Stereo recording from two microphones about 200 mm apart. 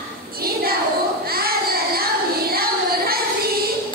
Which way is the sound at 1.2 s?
50° right (ahead or behind).